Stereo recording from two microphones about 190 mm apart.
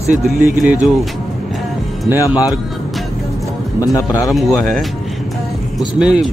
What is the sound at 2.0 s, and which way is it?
Speech, 10° right (ahead or behind).